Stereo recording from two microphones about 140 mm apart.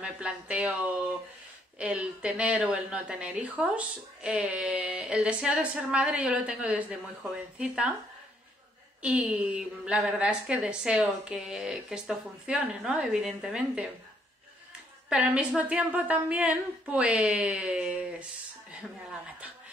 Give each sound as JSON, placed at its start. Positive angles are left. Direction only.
{"t": 0.0, "sound": "a woman's voice", "side_deg": -5}
{"t": 9.0, "sound": "a woman's voice", "side_deg": -10}
{"t": 15.0, "sound": "a woman's voice", "side_deg": -10}